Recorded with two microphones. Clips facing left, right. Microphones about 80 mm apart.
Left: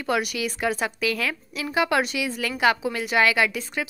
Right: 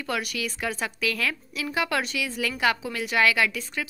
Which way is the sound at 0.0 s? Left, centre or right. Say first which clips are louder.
Left 5 dB; centre.